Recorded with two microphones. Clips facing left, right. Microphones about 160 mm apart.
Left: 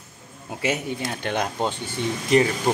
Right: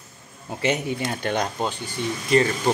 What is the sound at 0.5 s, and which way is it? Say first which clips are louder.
Speech: right 2 dB; 5° left (ahead or behind).